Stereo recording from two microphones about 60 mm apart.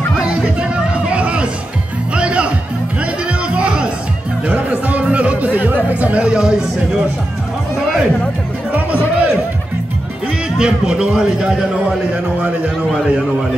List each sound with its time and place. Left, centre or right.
0.1 s music: centre
8.7 s music: right
10.6 s a man's voice: centre